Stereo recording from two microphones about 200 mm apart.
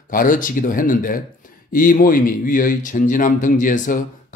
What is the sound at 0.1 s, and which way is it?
Speech, 45° left (ahead or behind).